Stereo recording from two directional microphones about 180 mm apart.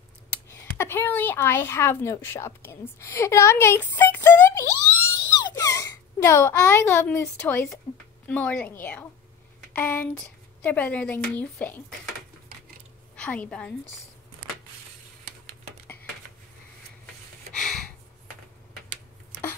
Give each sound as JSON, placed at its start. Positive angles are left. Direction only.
{"t": 0.3, "sound": "a child's voice", "side_deg": 15}
{"t": 7.9, "sound": "speech", "side_deg": 25}
{"t": 8.3, "sound": "speech", "side_deg": 10}
{"t": 13.1, "sound": "a woman's voice", "side_deg": 5}
{"t": 17.6, "sound": "a sound", "side_deg": 0}